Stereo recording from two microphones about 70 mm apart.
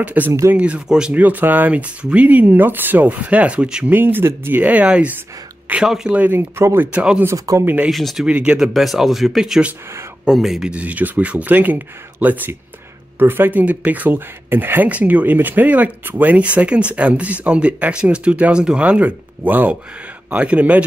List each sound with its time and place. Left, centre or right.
0.0 s speech: right
1.1 s speech: right
3.9 s speech: right
5.9 s speech: centre
6.1 s speech: right
6.9 s speech: centre
7.3 s speech: right
7.9 s speech: centre
8.3 s speech: centre
8.7 s speech: centre
10.7 s speech: right